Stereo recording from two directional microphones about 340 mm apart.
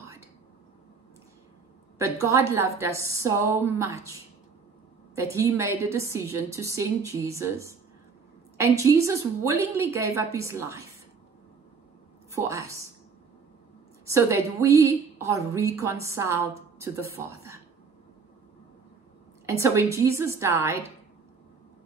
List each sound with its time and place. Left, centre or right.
0.0 s a sound: centre
2.0 s a woman's voice: centre
5.1 s a woman's voice: centre
12.3 s a woman's voice: centre
14.0 s a woman's voice: centre
19.4 s a woman's voice: centre